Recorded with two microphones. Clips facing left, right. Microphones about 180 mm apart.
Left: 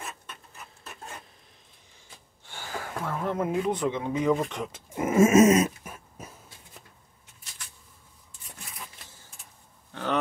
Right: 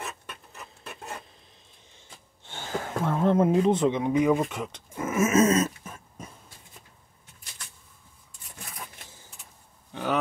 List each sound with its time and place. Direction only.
2.4 s gasp: 20° right (ahead or behind)
3.6 s speech: 25° right (ahead or behind)
4.9 s a sound: 25° left (ahead or behind)
5.6 s dog: 10° left (ahead or behind)